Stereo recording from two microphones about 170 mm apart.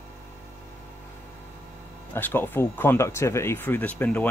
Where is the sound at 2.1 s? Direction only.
10° left (ahead or behind).